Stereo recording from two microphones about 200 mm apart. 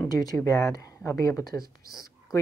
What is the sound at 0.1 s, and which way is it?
Speech, 20° left (ahead or behind).